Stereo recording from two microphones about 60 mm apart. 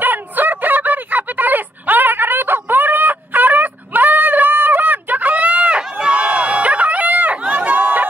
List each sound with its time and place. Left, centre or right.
0.0 s fowl: right